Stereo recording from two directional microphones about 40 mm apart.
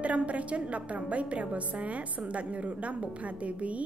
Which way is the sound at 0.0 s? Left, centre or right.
Right.